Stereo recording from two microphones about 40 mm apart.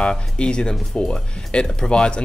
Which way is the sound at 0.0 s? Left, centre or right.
Left.